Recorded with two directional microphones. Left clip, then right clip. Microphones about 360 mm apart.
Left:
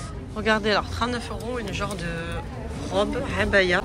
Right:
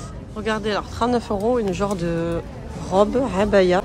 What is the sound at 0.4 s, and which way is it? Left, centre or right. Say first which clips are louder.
A woman's voice: left 1 dB; centre.